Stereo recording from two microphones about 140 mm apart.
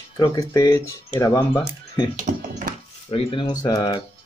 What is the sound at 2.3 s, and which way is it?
Speech, 65° right (ahead or behind).